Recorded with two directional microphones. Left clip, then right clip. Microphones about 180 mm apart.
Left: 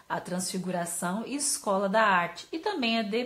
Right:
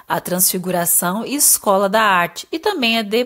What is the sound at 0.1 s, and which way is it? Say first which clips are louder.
A woman's voice: right 13 dB; 45° right (ahead or behind).